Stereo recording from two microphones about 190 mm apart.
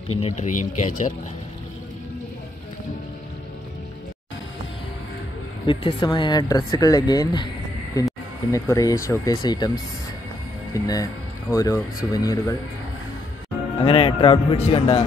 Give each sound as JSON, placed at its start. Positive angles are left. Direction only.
{"t": 0.2, "sound": "a man's voice", "side_deg": 40}
{"t": 5.7, "sound": "speech", "side_deg": 25}
{"t": 8.5, "sound": "speech", "side_deg": 15}
{"t": 10.7, "sound": "speech", "side_deg": 20}
{"t": 13.7, "sound": "a man's voice", "side_deg": 30}